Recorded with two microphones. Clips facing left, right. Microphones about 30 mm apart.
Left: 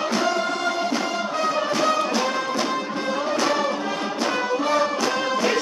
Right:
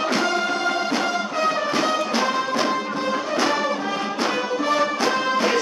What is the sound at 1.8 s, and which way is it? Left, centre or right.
Music, centre.